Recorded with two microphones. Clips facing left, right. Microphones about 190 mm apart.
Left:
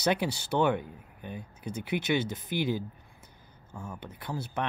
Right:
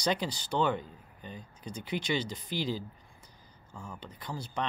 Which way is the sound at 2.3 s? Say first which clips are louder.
Left 4 dB; 60° left (ahead or behind).